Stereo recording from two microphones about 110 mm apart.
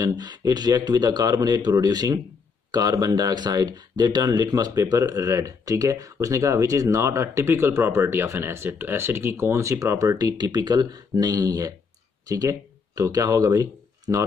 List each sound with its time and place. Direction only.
0.0 s speech: 40° right (ahead or behind)